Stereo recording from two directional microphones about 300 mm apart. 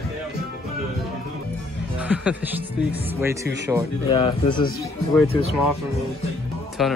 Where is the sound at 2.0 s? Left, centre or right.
Centre.